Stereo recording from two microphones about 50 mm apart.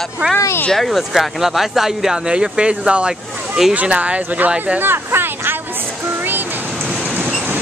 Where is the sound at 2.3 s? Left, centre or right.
Centre.